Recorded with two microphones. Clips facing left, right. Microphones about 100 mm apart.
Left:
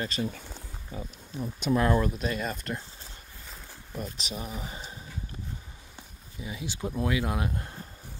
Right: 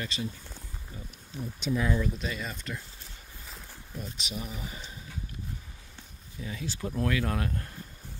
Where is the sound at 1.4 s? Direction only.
55° left (ahead or behind).